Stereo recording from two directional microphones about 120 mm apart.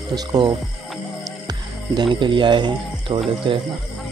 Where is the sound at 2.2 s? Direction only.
40° right (ahead or behind).